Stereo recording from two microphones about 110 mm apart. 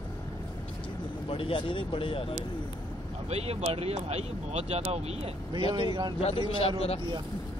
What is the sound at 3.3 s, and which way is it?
Speech, 70° right (ahead or behind).